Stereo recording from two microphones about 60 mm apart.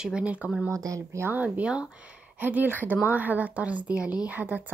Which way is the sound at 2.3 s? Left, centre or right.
Right.